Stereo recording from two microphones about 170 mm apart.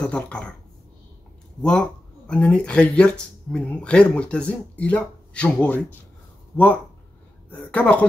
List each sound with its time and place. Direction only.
0.0 s speech: 5° left (ahead or behind)
1.6 s a woman's voice: 5° left (ahead or behind)